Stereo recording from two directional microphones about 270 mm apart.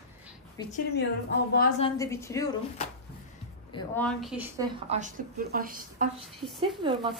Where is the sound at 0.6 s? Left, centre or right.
Centre.